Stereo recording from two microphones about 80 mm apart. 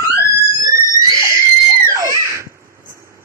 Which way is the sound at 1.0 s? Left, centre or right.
Right.